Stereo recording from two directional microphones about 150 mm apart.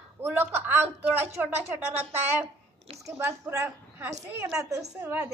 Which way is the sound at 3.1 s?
15° right (ahead or behind).